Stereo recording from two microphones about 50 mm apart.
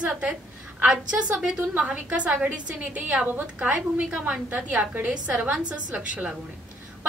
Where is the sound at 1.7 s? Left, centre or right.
Right.